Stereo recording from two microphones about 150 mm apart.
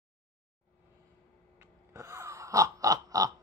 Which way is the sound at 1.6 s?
20° right (ahead or behind).